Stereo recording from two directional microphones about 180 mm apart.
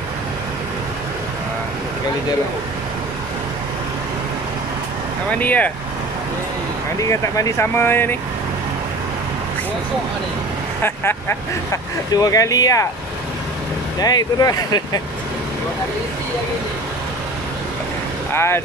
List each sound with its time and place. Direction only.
5.4 s speech: 10° left (ahead or behind)
7.0 s speech: 20° left (ahead or behind)
10.8 s speech: 15° left (ahead or behind)
13.9 s speech: 20° left (ahead or behind)
18.3 s speech: 15° left (ahead or behind)